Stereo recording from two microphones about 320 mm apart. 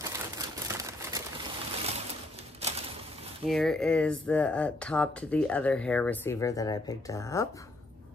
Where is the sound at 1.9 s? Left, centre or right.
Centre.